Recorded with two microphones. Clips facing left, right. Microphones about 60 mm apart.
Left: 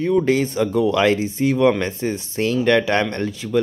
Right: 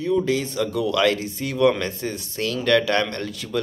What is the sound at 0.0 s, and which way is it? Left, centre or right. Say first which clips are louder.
Speech: left 4 dB; left.